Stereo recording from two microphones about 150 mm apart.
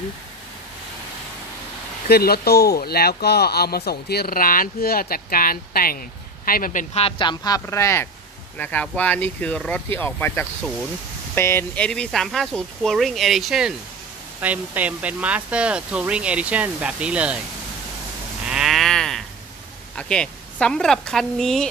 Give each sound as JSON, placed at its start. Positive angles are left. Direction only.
{"t": 2.0, "sound": "speech", "side_deg": 90}
{"t": 6.4, "sound": "speech", "side_deg": 70}
{"t": 7.0, "sound": "speech", "side_deg": 35}
{"t": 18.5, "sound": "livestock", "side_deg": 0}
{"t": 20.0, "sound": "speech", "side_deg": 5}